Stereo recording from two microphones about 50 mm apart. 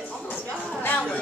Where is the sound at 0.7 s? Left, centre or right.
Left.